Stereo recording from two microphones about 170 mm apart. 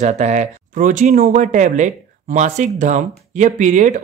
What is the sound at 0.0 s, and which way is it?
Speech, 45° right (ahead or behind).